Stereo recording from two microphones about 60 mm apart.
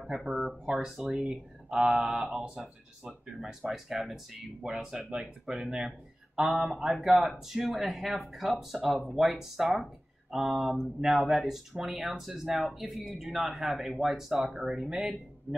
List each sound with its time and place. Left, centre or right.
0.0 s speech: centre
1.2 s speech: centre
1.8 s mantra: centre
2.2 s speech: centre